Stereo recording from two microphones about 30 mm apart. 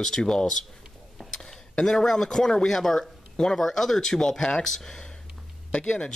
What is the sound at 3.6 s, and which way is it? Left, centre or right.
A man's voice, centre.